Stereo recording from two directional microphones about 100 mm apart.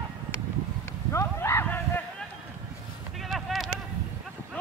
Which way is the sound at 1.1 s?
25° left (ahead or behind).